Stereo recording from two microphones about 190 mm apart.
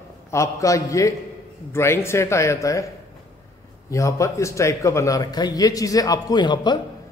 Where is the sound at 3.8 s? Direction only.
15° left (ahead or behind).